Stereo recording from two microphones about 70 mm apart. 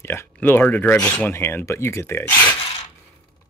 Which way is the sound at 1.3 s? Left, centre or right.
Left.